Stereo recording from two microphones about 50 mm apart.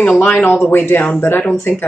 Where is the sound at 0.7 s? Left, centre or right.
Left.